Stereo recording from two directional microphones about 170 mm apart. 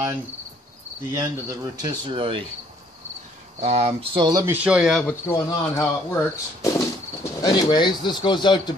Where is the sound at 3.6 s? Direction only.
40° right (ahead or behind); by 4.5 s 25° right (ahead or behind).